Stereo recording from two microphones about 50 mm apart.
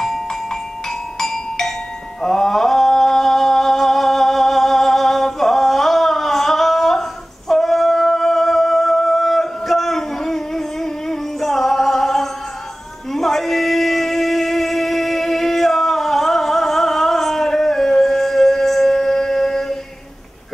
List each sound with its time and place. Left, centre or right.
0.0 s music: centre